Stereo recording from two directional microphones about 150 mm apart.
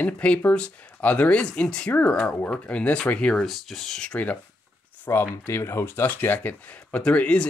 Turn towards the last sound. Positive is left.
turn(degrees=10)  # may be behind; listen again after turning